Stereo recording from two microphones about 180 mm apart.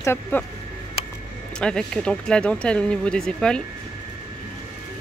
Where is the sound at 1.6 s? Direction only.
5° left (ahead or behind).